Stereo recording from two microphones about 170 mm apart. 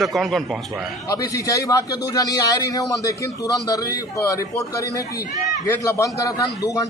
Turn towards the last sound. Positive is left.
turn(degrees=20)  # may be behind; listen again after turning